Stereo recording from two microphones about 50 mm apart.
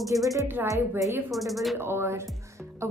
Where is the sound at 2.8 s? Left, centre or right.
Right.